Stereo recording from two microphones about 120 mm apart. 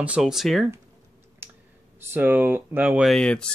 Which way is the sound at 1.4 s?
20° right (ahead or behind).